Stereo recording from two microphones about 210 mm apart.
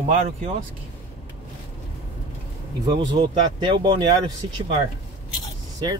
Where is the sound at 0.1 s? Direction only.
35° right (ahead or behind).